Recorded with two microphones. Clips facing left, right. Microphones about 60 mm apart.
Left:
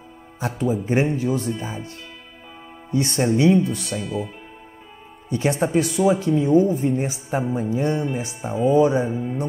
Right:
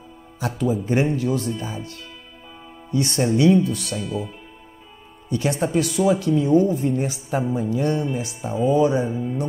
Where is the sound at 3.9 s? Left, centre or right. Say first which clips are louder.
Left 1 dB; centre.